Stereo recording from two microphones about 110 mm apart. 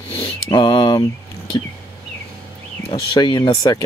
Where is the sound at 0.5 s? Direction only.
40° left (ahead or behind).